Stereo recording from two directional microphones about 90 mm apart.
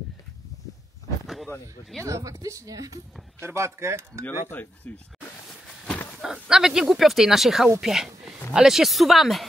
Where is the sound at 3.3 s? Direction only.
30° right (ahead or behind).